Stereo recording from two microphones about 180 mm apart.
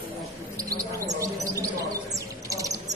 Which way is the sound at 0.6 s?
20° right (ahead or behind).